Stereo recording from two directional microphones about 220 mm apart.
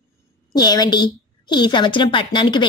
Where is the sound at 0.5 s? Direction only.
20° left (ahead or behind).